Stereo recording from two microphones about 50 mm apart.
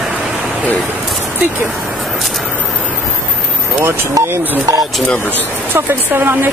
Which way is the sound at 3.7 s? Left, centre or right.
Right.